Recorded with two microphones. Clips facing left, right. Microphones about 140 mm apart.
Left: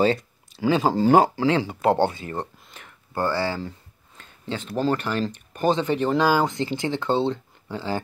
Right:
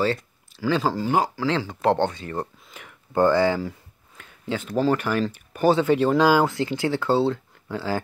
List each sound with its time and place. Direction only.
0.0 s speech: 20° left (ahead or behind); by 8.0 s 5° right (ahead or behind)